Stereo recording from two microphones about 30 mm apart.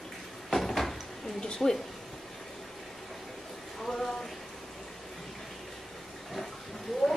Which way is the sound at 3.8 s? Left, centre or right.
Centre.